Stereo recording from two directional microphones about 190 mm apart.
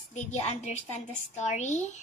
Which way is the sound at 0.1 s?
35° left (ahead or behind).